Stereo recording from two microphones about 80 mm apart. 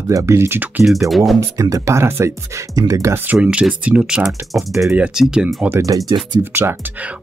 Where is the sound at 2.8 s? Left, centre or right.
Right.